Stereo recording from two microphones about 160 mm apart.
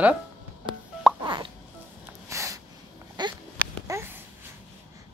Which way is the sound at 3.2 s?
25° right (ahead or behind).